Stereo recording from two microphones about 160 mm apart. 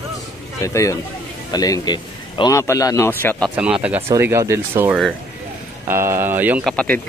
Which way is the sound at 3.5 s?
10° right (ahead or behind).